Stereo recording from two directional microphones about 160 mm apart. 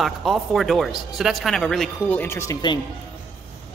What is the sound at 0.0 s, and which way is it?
Speech, centre (ahead or behind).